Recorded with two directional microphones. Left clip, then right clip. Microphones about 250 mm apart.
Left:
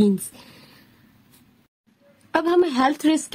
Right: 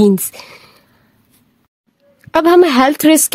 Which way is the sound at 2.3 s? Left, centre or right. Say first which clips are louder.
Right 10 dB; right.